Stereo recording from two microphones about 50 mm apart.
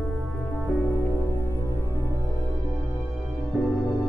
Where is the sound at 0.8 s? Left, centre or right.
Left.